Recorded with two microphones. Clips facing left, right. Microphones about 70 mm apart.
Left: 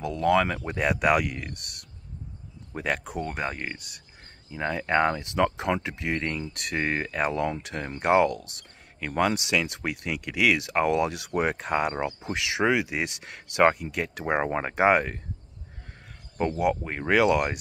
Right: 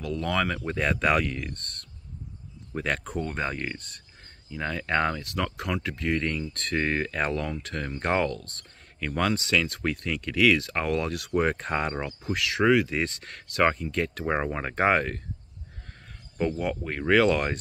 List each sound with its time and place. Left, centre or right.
0.0 s speech: centre
16.3 s speech: centre